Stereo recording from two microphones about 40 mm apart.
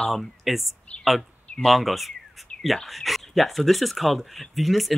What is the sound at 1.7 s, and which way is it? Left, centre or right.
Speech, centre.